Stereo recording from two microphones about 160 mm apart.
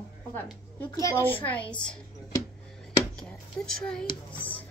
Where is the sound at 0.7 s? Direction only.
15° left (ahead or behind).